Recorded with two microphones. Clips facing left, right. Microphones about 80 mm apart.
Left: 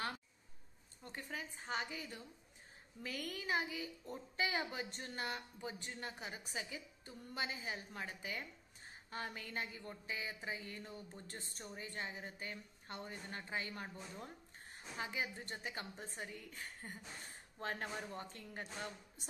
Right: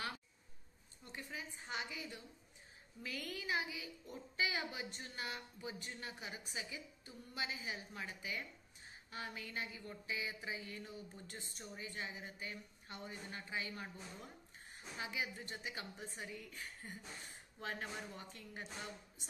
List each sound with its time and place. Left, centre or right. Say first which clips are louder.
1.1 s a woman's voice: left 1 dB; left